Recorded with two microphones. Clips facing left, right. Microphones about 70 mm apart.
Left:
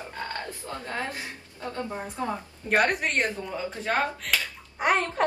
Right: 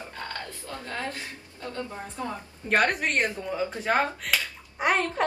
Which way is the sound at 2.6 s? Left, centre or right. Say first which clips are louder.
Even; centre.